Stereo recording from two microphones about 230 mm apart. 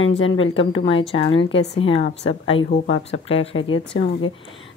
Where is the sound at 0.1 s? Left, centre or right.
Left.